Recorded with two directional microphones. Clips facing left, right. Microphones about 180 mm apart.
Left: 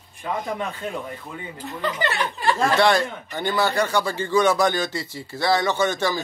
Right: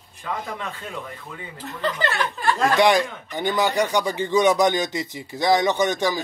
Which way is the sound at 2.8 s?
15° right (ahead or behind).